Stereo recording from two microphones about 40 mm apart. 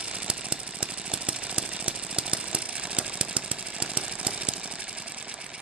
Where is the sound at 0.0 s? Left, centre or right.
Right.